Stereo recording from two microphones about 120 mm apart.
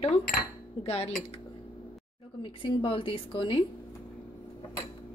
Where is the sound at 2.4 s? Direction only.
45° left (ahead or behind).